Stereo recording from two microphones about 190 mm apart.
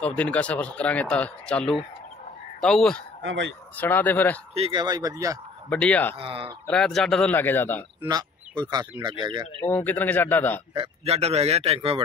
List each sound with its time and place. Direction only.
0.0 s a man's voice: 5° left (ahead or behind)
3.2 s speech: 70° right (ahead or behind)
3.7 s speech: 10° left (ahead or behind)
4.6 s speech: 25° right (ahead or behind)
5.7 s speech: 5° left (ahead or behind)
6.1 s speech: 30° right (ahead or behind)
6.7 s a man's voice: 5° left (ahead or behind)
8.1 s speech: 20° right (ahead or behind)
9.6 s speech: 10° left (ahead or behind)
10.7 s speech: 30° right (ahead or behind)